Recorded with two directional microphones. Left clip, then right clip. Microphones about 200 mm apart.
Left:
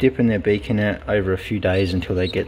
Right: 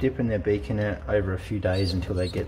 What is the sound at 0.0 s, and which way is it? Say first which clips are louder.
Speech: left 7 dB; 40° left (ahead or behind).